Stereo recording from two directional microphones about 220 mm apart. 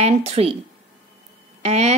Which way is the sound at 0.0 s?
30° right (ahead or behind).